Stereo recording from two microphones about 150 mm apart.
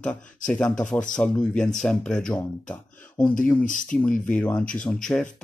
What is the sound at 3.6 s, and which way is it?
Speech, 60° left (ahead or behind).